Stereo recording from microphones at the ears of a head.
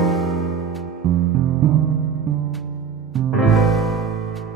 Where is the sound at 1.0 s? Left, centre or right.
Right.